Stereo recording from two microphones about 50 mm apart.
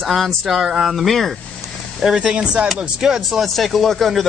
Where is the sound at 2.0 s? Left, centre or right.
Centre.